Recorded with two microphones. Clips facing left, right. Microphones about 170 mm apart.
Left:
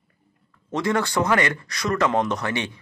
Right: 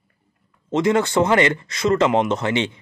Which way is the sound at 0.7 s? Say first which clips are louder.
Right 5 dB; 20° right (ahead or behind).